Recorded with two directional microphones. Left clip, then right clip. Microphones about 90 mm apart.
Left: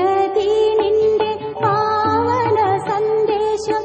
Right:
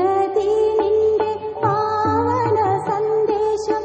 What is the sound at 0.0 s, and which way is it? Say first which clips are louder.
Music: left 2 dB; 35° left (ahead or behind).